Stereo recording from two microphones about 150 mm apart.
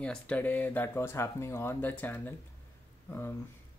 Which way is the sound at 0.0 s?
10° left (ahead or behind).